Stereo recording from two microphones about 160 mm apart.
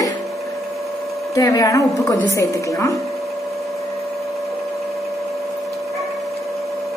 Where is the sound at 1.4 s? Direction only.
20° left (ahead or behind).